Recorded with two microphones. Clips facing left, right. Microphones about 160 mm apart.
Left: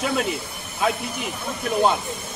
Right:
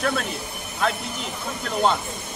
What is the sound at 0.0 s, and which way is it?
Speech, 10° left (ahead or behind).